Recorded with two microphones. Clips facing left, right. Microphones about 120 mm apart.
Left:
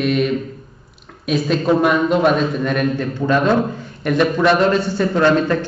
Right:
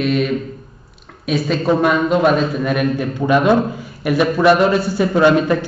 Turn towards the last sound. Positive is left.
turn(degrees=-10)  # may be behind; listen again after turning